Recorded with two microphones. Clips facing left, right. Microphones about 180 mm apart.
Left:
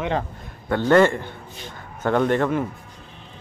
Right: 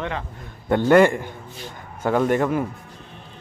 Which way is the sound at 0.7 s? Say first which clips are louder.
Right 1 dB; 15° right (ahead or behind).